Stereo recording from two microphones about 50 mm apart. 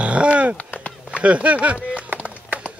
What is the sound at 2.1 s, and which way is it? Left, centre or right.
Horse, right.